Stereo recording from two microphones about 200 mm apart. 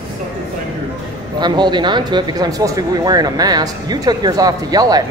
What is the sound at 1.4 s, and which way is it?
Speech, 20° right (ahead or behind).